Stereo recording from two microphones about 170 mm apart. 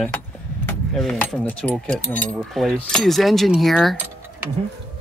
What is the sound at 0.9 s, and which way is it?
Speech, 5° left (ahead or behind).